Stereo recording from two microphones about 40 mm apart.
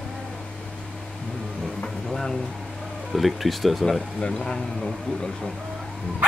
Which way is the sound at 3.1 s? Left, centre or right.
Centre.